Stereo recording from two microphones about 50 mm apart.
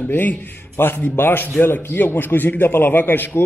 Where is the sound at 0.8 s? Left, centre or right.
Left.